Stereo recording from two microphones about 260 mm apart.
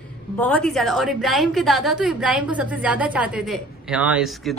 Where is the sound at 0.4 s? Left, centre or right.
Centre.